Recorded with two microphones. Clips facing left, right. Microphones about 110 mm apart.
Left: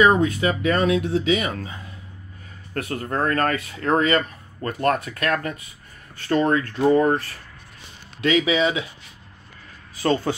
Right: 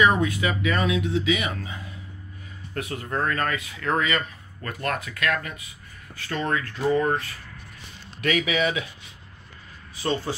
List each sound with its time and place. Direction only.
0.0 s a man's voice: 35° left (ahead or behind)
2.7 s speech: 50° left (ahead or behind)
3.0 s a man's voice: 40° left (ahead or behind)
8.2 s speech: 25° left (ahead or behind)